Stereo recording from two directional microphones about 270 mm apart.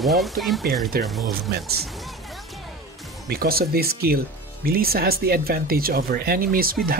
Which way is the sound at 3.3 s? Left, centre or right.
Right.